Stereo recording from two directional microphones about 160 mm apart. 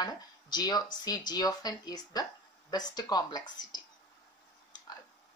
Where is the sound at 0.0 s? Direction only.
25° left (ahead or behind).